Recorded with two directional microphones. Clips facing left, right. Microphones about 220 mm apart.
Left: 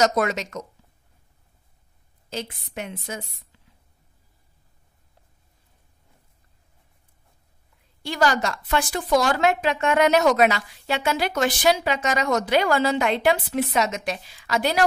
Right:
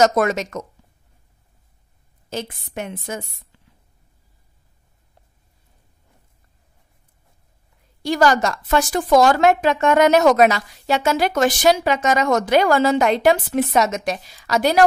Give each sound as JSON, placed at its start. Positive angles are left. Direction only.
{"t": 0.0, "sound": "a woman's voice", "side_deg": -50}
{"t": 2.2, "sound": "a woman's voice", "side_deg": -50}
{"t": 8.0, "sound": "a woman's voice", "side_deg": -45}